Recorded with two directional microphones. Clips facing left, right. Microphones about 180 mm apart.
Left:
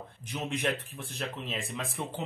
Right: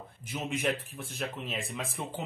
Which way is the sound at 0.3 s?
Centre (ahead or behind).